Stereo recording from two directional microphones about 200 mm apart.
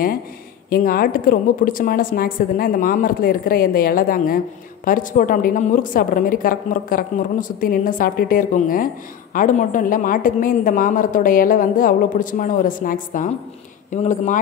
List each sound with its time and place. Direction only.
0.7 s a woman's voice: 45° left (ahead or behind)